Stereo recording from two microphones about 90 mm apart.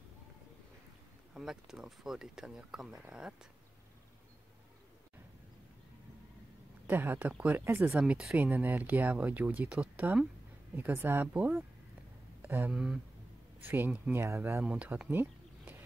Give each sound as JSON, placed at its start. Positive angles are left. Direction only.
{"t": 1.3, "sound": "speech", "side_deg": -5}
{"t": 6.9, "sound": "speech", "side_deg": -20}
{"t": 7.9, "sound": "speech", "side_deg": -5}
{"t": 8.4, "sound": "speech", "side_deg": -20}
{"t": 12.4, "sound": "a sound", "side_deg": -25}
{"t": 12.7, "sound": "speech", "side_deg": -5}
{"t": 13.6, "sound": "speech", "side_deg": -20}
{"t": 14.2, "sound": "speech", "side_deg": -30}
{"t": 14.6, "sound": "speech", "side_deg": -15}